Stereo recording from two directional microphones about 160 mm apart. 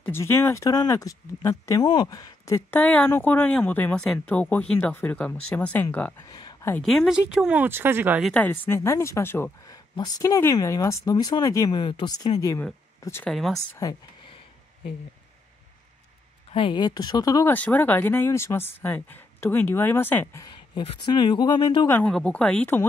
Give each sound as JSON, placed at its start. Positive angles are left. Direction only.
{"t": 0.0, "sound": "speech", "side_deg": 15}
{"t": 6.1, "sound": "a sound", "side_deg": 25}
{"t": 6.8, "sound": "speech", "side_deg": 0}
{"t": 8.3, "sound": "speech", "side_deg": 10}
{"t": 13.3, "sound": "speech", "side_deg": 0}
{"t": 13.6, "sound": "speech", "side_deg": 20}
{"t": 16.5, "sound": "speech", "side_deg": 30}
{"t": 17.5, "sound": "speech", "side_deg": 10}
{"t": 20.4, "sound": "speech", "side_deg": 30}
{"t": 21.8, "sound": "speech", "side_deg": 10}